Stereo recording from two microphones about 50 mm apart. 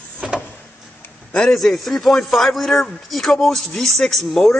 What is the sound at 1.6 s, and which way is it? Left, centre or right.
A man's voice, centre.